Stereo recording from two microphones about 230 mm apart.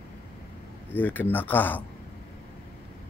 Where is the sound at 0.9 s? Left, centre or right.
Centre.